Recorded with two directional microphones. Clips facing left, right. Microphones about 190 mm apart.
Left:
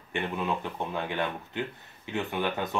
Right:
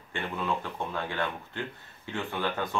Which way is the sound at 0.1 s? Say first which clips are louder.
Left 2 dB; 20° left (ahead or behind).